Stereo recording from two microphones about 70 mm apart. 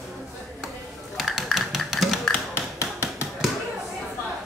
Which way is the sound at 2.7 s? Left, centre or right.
Left.